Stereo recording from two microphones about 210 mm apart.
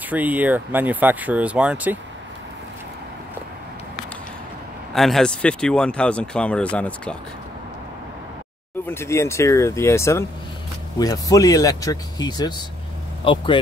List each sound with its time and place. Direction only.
0.1 s speech: 5° right (ahead or behind)
4.9 s speech: centre (ahead or behind)
8.8 s speech: 10° left (ahead or behind)